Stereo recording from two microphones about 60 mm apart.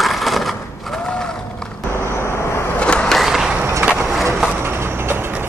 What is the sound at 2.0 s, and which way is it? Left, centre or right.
Vehicle, left.